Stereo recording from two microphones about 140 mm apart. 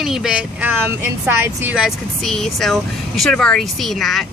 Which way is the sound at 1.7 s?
Centre (ahead or behind).